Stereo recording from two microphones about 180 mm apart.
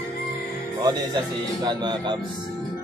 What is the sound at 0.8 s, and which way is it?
Speech, 20° right (ahead or behind).